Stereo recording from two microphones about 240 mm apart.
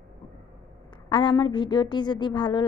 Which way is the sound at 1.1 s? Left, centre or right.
Centre.